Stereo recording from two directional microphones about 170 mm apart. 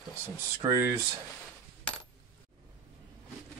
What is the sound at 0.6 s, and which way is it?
Speech, 15° right (ahead or behind).